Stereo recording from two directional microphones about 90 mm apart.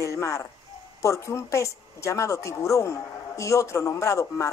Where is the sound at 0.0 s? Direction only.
35° left (ahead or behind).